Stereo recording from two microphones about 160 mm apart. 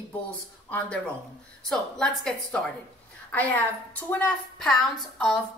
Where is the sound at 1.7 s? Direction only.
5° left (ahead or behind).